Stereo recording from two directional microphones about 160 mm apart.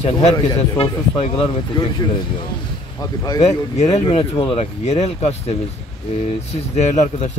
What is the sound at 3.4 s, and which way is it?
Speech, 45° left (ahead or behind).